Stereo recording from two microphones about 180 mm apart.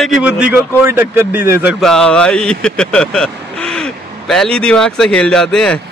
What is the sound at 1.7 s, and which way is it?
Speech, 5° left (ahead or behind).